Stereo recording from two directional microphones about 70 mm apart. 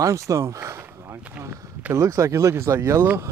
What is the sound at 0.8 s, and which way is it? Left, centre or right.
Speech, right.